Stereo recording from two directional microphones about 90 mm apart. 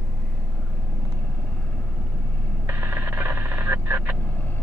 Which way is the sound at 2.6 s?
20° right (ahead or behind).